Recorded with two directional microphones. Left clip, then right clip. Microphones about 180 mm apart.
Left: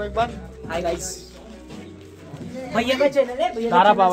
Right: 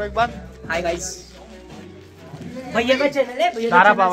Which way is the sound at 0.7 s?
10° left (ahead or behind).